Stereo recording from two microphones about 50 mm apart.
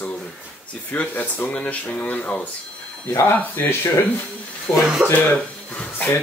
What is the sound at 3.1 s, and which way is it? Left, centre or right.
Speech, left.